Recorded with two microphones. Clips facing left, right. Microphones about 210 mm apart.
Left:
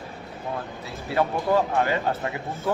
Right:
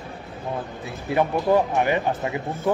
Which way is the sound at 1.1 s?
20° right (ahead or behind).